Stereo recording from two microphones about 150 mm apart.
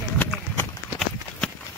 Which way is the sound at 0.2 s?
15° left (ahead or behind).